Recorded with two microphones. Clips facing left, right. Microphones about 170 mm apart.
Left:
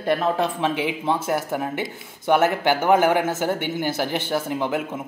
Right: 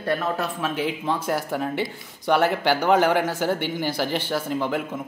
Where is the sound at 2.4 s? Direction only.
10° left (ahead or behind).